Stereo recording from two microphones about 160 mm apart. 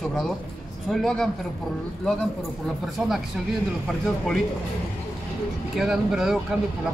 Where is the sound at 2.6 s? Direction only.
Centre (ahead or behind).